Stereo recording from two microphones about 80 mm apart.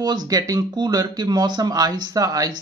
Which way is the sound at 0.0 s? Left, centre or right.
Right.